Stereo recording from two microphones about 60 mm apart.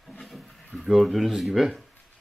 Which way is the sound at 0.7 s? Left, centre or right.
Centre.